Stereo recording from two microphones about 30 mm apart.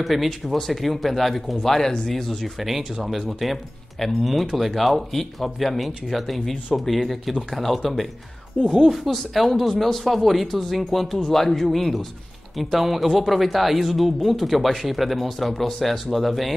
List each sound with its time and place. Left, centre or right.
0.0 s speech: centre
2.6 s speech: centre
8.6 s speech: centre
9.1 s speech: centre